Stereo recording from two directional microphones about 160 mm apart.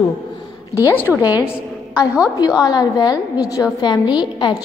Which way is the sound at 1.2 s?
25° left (ahead or behind).